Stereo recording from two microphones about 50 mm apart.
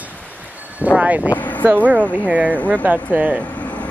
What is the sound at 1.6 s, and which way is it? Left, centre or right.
Speech, right.